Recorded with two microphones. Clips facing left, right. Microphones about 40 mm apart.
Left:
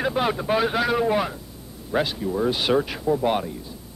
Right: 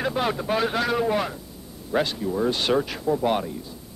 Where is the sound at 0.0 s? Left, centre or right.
Centre.